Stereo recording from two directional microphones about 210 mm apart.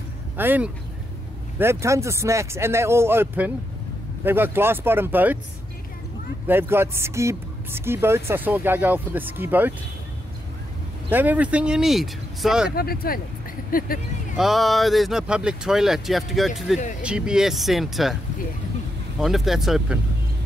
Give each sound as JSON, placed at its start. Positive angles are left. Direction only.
{"t": 0.4, "sound": "speech", "side_deg": -10}
{"t": 6.4, "sound": "speech", "side_deg": -10}
{"t": 11.1, "sound": "speech", "side_deg": -10}
{"t": 12.7, "sound": "speech", "side_deg": 45}
{"t": 14.3, "sound": "speech", "side_deg": 0}
{"t": 19.1, "sound": "speech", "side_deg": 0}